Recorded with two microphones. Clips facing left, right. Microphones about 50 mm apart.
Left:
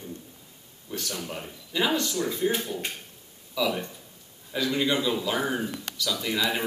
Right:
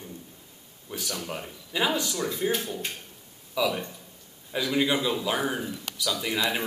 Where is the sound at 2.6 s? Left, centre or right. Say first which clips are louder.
Left 1 dB; centre.